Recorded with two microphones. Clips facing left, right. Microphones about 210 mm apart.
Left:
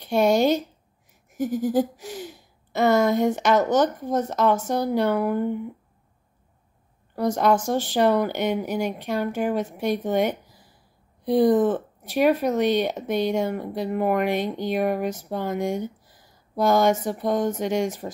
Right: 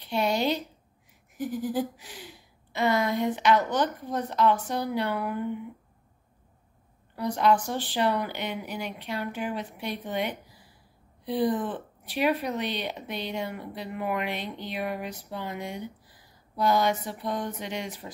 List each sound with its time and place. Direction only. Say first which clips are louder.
0.0 s a sound: left 7 dB; 45° left (ahead or behind)
1.3 s speech: left 7 dB; 45° left (ahead or behind)
7.2 s speech: left 4 dB; 45° left (ahead or behind)